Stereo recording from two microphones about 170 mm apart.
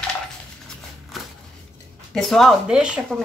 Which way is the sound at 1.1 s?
Centre (ahead or behind).